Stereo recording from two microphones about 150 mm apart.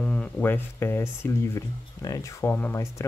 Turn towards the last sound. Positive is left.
turn(degrees=15)  # may be behind; listen again after turning